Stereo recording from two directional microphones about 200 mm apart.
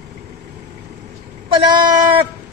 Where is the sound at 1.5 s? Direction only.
20° right (ahead or behind).